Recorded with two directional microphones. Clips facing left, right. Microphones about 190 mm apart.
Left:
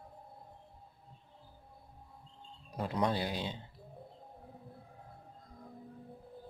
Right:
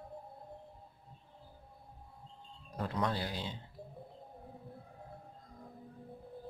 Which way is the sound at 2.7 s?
15° left (ahead or behind).